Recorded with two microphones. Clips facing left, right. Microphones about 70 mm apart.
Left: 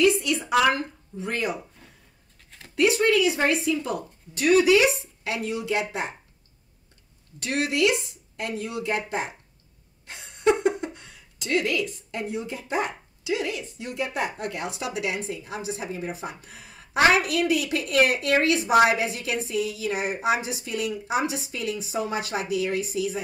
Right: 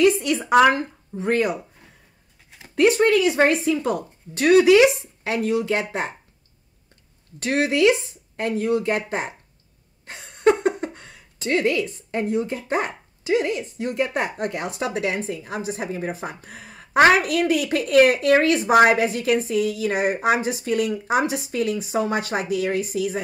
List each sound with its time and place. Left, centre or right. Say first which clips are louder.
0.0 s a woman's voice: right 3 dB; right
2.7 s a woman's voice: right 4 dB; right
7.4 s a woman's voice: right 5 dB; right
10.1 s a sound: right 4 dB; right
10.7 s a woman's voice: right 2 dB; right